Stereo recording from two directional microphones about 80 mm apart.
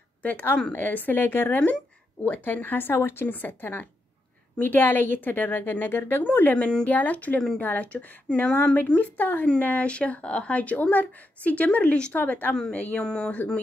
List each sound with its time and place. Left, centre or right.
0.2 s speech: left
7.3 s speech: centre
7.6 s speech: centre
12.5 s speech: centre